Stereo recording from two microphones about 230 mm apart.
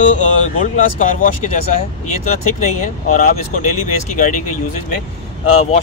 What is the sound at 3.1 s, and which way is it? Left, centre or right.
Speech, left.